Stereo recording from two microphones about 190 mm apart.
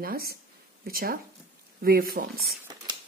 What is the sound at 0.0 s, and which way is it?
Speech, 50° right (ahead or behind).